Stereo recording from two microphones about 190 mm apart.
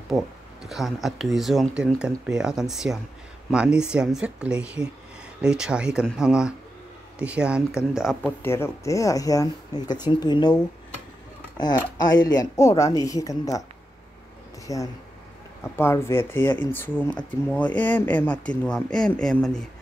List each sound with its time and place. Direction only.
0.1 s speech: centre (ahead or behind)
8.4 s speech: 10° left (ahead or behind)
14.7 s speech: 15° left (ahead or behind)